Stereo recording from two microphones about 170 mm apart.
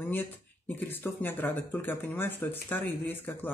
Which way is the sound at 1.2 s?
10° left (ahead or behind).